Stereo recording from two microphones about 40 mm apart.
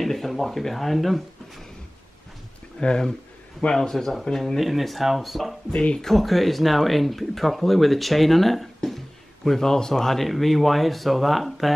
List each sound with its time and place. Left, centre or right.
0.0 s speech: centre
2.8 s speech: left
3.7 s speech: centre
4.6 s speech: centre
5.7 s speech: left
5.9 s speech: centre